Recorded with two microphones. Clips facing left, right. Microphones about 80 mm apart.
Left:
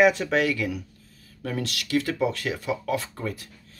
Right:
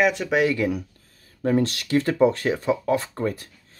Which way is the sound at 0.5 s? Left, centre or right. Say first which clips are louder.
Right 5 dB; right.